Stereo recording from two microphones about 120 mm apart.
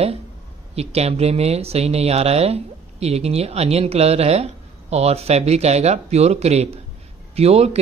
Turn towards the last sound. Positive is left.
turn(degrees=-60)  # may be behind; listen again after turning